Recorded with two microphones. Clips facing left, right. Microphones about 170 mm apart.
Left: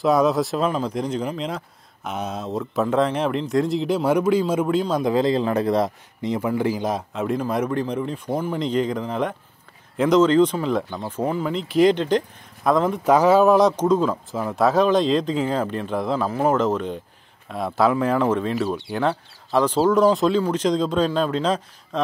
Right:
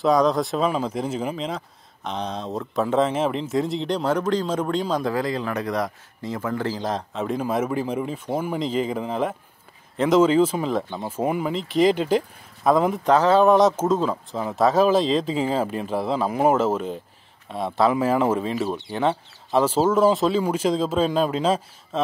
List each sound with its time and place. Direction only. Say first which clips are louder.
0.0 s speech: left 1 dB; 5° left (ahead or behind)
5.0 s speech: left 5 dB; 25° left (ahead or behind)
6.2 s speech: left 4 dB; 15° left (ahead or behind); by 11.5 s 10° right (ahead or behind)
11.5 s speech: left 3 dB; centre (ahead or behind)
13.0 s speech: left 2 dB; 10° left (ahead or behind); by 22.0 s 5° right (ahead or behind)